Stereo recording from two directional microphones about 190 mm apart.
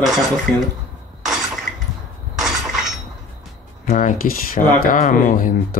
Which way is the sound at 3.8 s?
45° left (ahead or behind).